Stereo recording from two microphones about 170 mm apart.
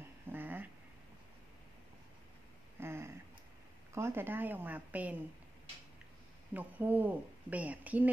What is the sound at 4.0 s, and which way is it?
A woman's voice, 15° right (ahead or behind).